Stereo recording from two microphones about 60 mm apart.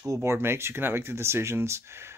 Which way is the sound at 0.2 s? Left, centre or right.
Right.